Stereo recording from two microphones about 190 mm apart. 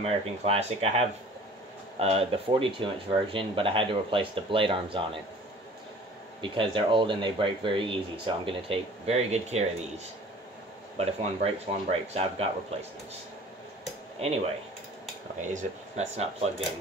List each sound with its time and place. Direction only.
0.0 s speech: 35° right (ahead or behind)
6.4 s speech: 25° right (ahead or behind)
11.0 s speech: 30° right (ahead or behind)
15.4 s speech: 40° right (ahead or behind)